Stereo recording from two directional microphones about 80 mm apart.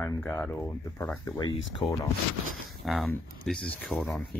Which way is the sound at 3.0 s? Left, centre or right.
Centre.